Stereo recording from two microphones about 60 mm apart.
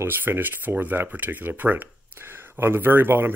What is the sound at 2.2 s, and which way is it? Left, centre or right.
Speech, right.